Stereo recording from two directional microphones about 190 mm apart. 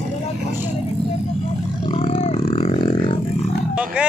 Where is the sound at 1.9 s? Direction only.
30° left (ahead or behind).